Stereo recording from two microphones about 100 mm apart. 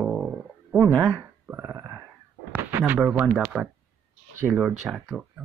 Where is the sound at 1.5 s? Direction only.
20° right (ahead or behind).